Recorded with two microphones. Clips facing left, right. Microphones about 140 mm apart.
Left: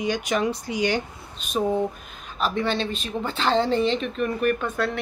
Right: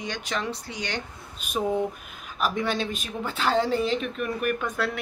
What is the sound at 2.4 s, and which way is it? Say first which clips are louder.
Speech: left 2 dB; 10° right (ahead or behind).